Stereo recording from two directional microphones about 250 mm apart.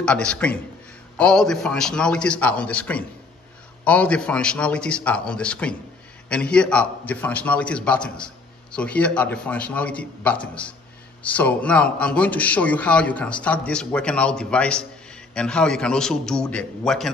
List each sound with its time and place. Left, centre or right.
0.0 s a man's voice: centre